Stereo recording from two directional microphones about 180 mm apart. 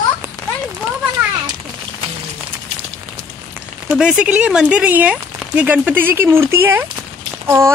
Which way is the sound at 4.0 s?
5° right (ahead or behind).